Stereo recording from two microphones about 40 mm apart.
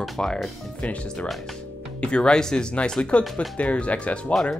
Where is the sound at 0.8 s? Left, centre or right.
Left.